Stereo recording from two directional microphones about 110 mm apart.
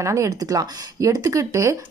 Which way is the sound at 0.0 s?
30° right (ahead or behind).